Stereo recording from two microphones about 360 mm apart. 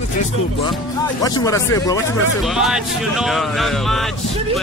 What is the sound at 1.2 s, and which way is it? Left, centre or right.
Speech, centre.